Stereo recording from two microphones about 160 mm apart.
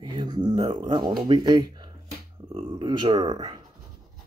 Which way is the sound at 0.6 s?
30° right (ahead or behind).